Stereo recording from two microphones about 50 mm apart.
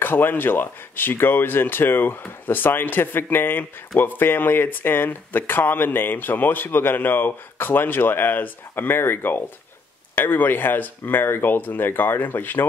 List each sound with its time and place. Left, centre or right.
0.0 s speech: left